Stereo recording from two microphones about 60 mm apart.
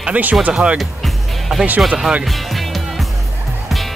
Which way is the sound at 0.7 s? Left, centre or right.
Centre.